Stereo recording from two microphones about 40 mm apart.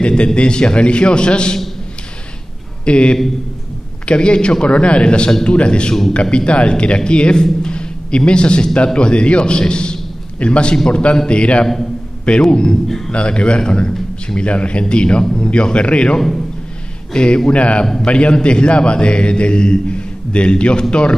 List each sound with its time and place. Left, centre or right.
0.0 s a man's voice: left
2.8 s a man's voice: left
7.6 s a sound: left
8.3 s a man's voice: left
12.8 s a man's voice: centre
13.1 s a man's voice: left
16.2 s a man's voice: centre
17.1 s a man's voice: left